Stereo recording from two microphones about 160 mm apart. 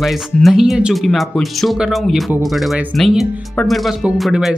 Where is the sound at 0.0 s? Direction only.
Centre (ahead or behind).